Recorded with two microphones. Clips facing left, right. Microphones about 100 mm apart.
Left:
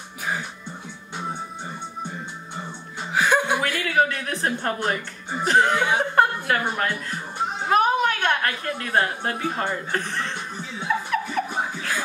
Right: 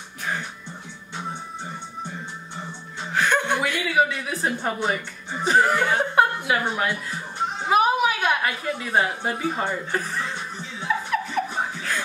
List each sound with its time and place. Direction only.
3.1 s a woman's voice: 5° left (ahead or behind)
11.1 s chuckle: centre (ahead or behind)